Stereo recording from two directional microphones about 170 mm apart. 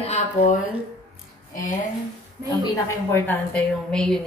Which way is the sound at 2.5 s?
15° left (ahead or behind).